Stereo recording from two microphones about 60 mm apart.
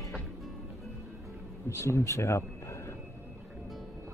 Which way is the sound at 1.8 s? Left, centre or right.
Left.